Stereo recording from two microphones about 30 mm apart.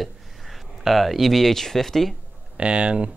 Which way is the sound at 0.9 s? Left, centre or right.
Centre.